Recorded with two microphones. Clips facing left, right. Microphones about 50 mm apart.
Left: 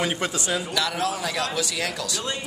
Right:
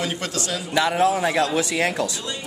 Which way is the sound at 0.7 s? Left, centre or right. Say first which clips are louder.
Right 11 dB; right.